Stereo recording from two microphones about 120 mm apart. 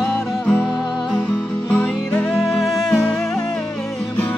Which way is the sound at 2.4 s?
Centre (ahead or behind).